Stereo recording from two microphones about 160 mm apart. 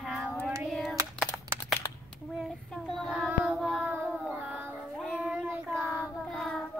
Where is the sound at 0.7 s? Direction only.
Centre (ahead or behind).